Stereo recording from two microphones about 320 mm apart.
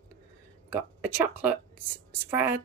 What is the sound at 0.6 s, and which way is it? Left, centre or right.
A woman's voice, centre.